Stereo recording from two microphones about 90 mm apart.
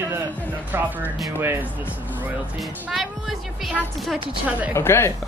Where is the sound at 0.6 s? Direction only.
20° right (ahead or behind).